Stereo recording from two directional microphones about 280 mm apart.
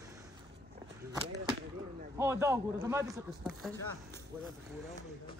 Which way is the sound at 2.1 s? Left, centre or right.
Centre.